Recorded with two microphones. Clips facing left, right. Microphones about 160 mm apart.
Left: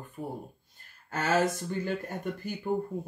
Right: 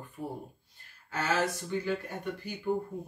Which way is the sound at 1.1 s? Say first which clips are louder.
Left 3 dB; 45° left (ahead or behind).